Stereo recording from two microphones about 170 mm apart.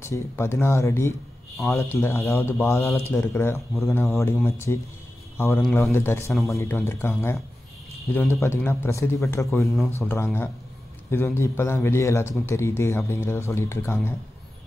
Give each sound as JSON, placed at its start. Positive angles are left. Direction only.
{"t": 0.0, "sound": "speech", "side_deg": 15}